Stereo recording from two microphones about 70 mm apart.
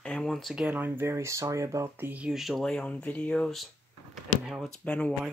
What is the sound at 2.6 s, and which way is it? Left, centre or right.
Speech, centre.